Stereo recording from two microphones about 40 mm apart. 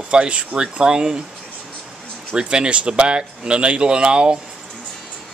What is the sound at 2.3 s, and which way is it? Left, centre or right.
Speech, right.